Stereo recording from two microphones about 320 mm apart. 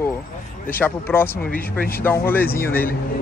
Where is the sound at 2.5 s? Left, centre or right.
Left.